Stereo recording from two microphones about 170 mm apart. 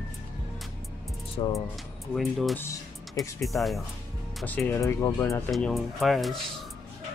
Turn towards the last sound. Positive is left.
turn(degrees=0)  # may be behind; listen again after turning